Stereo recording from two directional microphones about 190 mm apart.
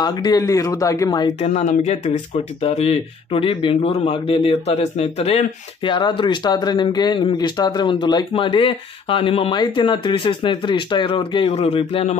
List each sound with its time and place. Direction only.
0.0 s speech: 20° left (ahead or behind)
1.5 s speech: 35° left (ahead or behind)